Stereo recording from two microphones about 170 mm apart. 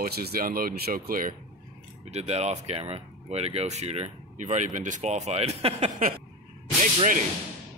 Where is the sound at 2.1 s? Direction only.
40° right (ahead or behind).